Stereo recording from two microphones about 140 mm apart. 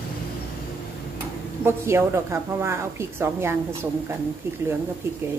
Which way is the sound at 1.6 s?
15° right (ahead or behind).